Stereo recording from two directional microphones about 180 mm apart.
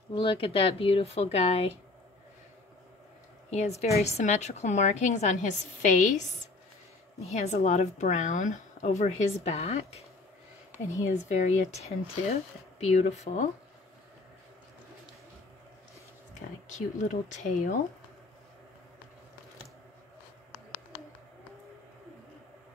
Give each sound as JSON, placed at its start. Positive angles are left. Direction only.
{"t": 0.1, "sound": "speech", "side_deg": 30}
{"t": 3.4, "sound": "a woman's voice", "side_deg": 35}
{"t": 11.2, "sound": "speech", "side_deg": 40}
{"t": 16.3, "sound": "speech", "side_deg": 40}